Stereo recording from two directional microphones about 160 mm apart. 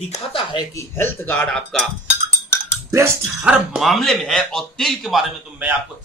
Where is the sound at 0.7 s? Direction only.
15° left (ahead or behind).